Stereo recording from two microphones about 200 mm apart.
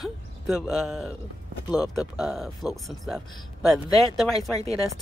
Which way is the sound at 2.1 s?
Centre (ahead or behind).